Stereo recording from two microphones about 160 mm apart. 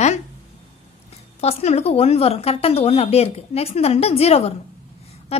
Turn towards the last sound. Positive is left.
turn(degrees=40)  # may be behind; listen again after turning